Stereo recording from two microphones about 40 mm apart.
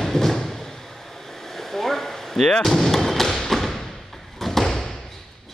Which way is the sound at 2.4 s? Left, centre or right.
Centre.